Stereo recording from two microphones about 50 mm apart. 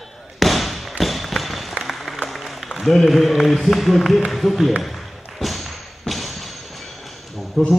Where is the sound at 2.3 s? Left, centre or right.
Centre.